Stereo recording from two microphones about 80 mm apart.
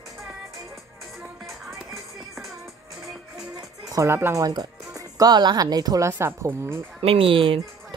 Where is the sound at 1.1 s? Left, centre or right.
Centre.